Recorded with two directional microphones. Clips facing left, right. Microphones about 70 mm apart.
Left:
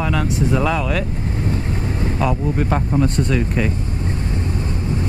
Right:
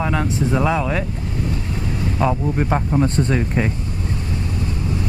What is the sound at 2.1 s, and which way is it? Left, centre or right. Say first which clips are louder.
Speech: right 1 dB; right.